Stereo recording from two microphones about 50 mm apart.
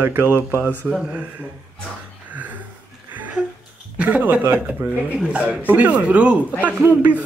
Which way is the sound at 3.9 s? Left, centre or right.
Right.